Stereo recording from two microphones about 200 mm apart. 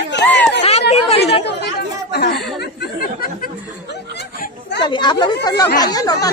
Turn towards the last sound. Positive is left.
turn(degrees=20)  # may be behind; listen again after turning